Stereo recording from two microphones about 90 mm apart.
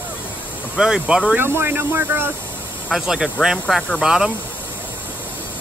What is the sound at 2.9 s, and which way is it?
Speech, 5° right (ahead or behind).